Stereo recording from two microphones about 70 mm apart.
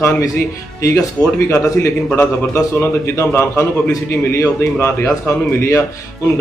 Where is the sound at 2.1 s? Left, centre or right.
Left.